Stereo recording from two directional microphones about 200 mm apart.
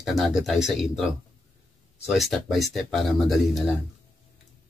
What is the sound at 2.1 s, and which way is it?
Speech, centre (ahead or behind).